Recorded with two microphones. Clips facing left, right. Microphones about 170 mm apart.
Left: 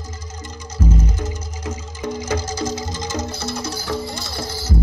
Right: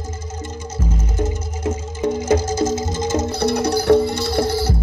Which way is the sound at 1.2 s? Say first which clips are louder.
Right 6 dB; 50° right (ahead or behind).